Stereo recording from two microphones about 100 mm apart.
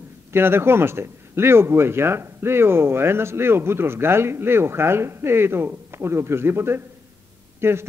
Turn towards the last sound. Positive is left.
turn(degrees=-25)  # may be behind; listen again after turning